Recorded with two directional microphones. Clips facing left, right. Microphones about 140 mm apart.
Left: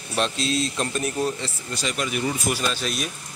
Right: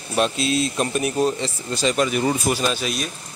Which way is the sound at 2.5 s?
20° right (ahead or behind).